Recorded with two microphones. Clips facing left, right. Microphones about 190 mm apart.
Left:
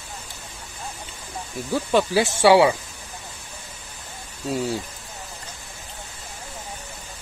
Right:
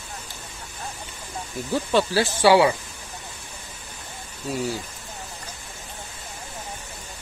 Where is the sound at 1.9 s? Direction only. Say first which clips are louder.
Left 2 dB; 10° left (ahead or behind).